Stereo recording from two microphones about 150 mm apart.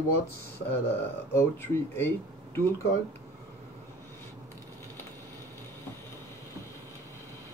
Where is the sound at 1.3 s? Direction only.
15° left (ahead or behind).